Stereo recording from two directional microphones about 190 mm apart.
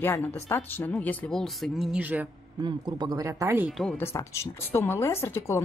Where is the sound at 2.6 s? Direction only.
20° right (ahead or behind).